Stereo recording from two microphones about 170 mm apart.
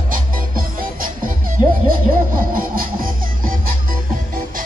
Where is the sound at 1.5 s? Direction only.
55° right (ahead or behind).